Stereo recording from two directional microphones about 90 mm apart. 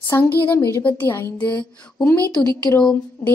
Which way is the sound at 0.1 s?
25° left (ahead or behind).